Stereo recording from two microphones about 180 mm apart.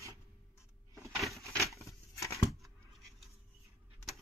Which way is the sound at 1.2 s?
Centre (ahead or behind).